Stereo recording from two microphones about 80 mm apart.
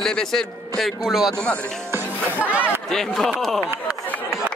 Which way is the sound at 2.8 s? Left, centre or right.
Centre.